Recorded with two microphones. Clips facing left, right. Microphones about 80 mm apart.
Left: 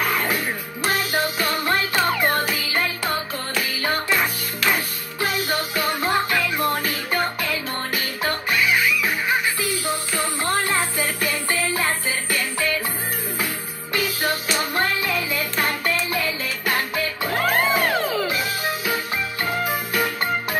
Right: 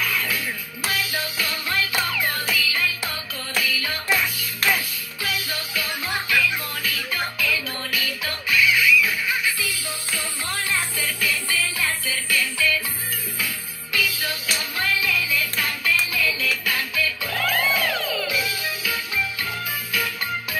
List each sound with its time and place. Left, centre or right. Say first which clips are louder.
0.0 s music: left 4 dB; left
13.9 s music: left 3 dB; left